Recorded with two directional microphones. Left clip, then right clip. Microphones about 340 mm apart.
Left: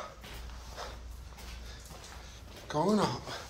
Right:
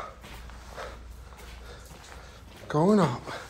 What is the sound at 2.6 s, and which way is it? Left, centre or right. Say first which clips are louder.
Speech: right 6 dB; centre.